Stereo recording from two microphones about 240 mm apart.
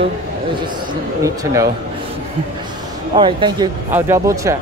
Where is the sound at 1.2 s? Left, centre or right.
Centre.